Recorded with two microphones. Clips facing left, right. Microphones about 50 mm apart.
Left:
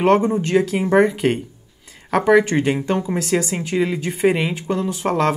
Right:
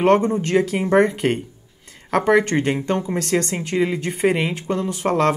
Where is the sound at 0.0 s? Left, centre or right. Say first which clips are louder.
Even; centre.